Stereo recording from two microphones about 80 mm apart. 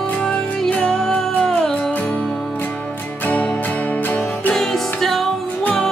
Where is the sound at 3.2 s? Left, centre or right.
Centre.